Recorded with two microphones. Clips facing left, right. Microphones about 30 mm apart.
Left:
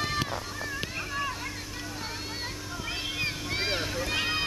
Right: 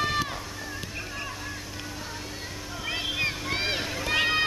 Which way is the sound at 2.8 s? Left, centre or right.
Centre.